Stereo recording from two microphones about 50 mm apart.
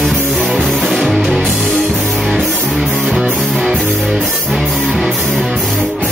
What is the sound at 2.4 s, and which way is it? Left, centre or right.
Music, right.